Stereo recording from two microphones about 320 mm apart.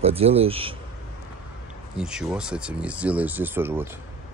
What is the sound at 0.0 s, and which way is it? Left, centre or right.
Speech, centre.